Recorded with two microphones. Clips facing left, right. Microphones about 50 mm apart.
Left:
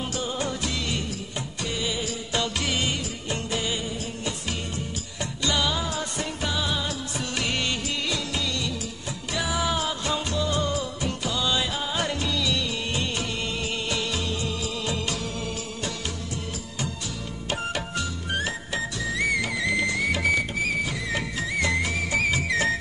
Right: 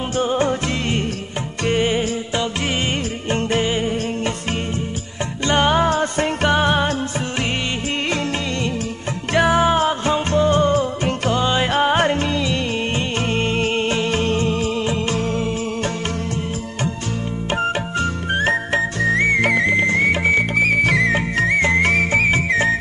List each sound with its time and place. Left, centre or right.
0.2 s music: right
3.3 s music: right
5.4 s music: right
9.3 s music: right
11.7 s music: right
17.5 s music: right
20.5 s music: right
21.5 s music: right
21.8 s whistle: right